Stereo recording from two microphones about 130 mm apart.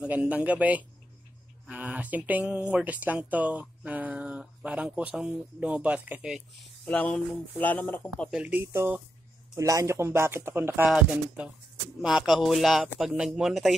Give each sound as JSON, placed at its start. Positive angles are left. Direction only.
{"t": 0.0, "sound": "speech", "side_deg": -10}
{"t": 6.9, "sound": "speech", "side_deg": 10}
{"t": 8.3, "sound": "speech", "side_deg": -10}
{"t": 9.6, "sound": "speech", "side_deg": -25}
{"t": 10.9, "sound": "speech", "side_deg": -5}